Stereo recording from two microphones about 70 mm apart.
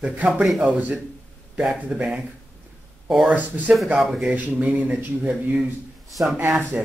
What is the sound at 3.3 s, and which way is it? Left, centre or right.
Speech, right.